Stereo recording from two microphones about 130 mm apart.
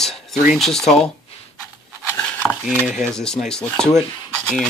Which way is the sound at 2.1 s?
10° left (ahead or behind).